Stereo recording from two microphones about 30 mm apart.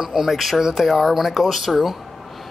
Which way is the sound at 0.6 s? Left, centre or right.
Centre.